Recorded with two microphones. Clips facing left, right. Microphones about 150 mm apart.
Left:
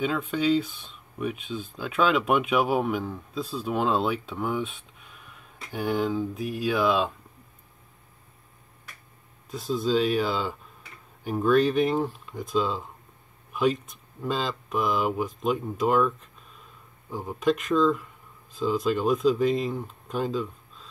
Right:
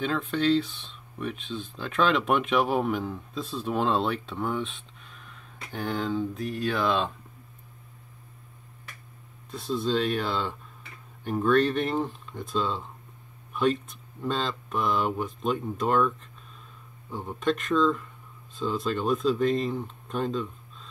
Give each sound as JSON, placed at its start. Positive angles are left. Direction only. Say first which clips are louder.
{"t": 0.0, "sound": "speech", "louder": "left 1 dB", "side_deg": 5}
{"t": 9.5, "sound": "speech", "louder": "left 2 dB", "side_deg": 5}